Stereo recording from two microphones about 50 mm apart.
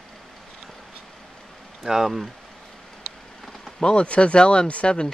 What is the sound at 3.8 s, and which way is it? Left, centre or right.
Speech, centre.